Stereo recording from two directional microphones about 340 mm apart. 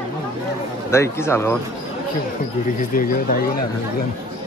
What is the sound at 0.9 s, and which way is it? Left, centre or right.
Speech, centre.